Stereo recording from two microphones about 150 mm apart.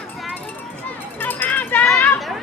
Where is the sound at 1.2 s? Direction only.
15° left (ahead or behind).